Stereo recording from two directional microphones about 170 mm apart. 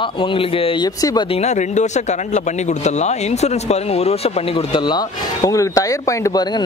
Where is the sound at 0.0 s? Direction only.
30° left (ahead or behind).